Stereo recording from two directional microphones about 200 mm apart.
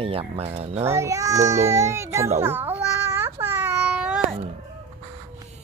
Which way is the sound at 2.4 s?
10° right (ahead or behind).